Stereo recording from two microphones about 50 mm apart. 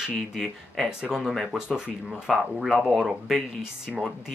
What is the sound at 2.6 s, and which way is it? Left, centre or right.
Speech, centre.